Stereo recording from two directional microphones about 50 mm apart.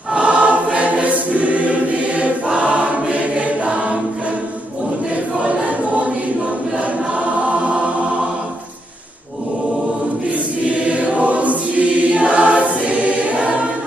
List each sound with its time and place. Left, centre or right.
0.1 s choir: right
5.4 s choir: right
7.4 s choir: right
10.7 s choir: right